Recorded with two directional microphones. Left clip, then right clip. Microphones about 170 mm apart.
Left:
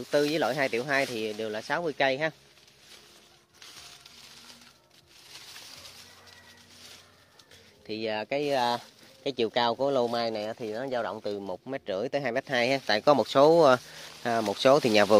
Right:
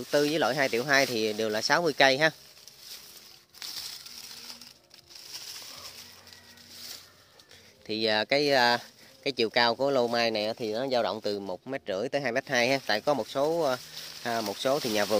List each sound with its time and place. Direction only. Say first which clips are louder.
0.0 s speech: even; 5° right (ahead or behind); by 2.3 s 30° right (ahead or behind)
7.8 s speech: right 5 dB; 20° right (ahead or behind)
9.2 s speech: right 2 dB; centre (ahead or behind); by 11.3 s 25° right (ahead or behind)
11.3 s speech: right 1 dB; 5° right (ahead or behind)
13.0 s speech: left 7 dB; 40° left (ahead or behind)
14.2 s speech: left 5 dB; 25° left (ahead or behind)